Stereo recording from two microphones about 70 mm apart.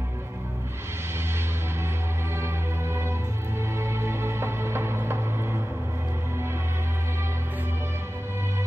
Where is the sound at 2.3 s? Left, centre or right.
Right.